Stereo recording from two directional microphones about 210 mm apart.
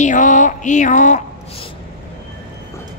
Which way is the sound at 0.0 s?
35° left (ahead or behind).